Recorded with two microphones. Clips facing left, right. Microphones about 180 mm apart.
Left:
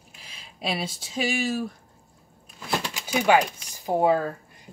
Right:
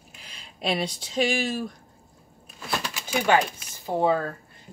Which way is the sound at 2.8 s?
15° left (ahead or behind).